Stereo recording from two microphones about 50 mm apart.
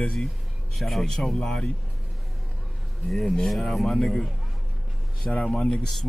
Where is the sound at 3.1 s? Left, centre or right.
Centre.